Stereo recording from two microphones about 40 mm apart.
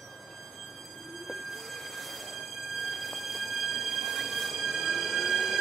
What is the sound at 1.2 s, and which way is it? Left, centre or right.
Train, centre.